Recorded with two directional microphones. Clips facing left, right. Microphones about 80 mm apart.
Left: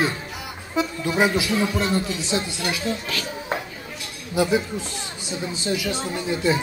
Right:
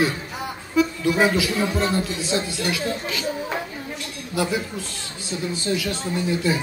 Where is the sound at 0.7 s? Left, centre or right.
Left.